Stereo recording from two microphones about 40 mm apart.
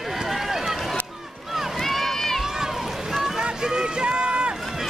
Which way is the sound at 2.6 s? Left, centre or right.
Centre.